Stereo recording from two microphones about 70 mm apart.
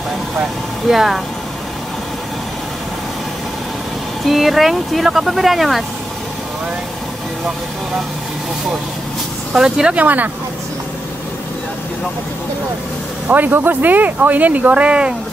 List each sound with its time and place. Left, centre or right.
0.8 s speech: centre
4.2 s speech: centre
9.5 s speech: centre
10.0 s speech: right
13.3 s speech: right